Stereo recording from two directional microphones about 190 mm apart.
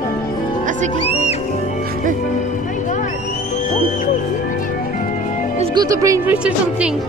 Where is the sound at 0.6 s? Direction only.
40° right (ahead or behind).